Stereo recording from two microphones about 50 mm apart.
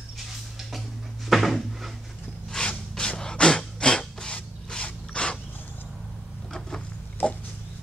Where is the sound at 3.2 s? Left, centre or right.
Centre.